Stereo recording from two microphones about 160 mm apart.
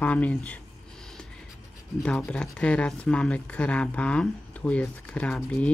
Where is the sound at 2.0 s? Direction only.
5° left (ahead or behind).